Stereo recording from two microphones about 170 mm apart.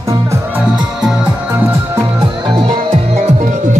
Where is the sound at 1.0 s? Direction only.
5° right (ahead or behind).